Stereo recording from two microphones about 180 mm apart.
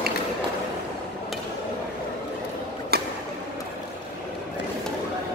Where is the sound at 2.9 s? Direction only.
60° right (ahead or behind).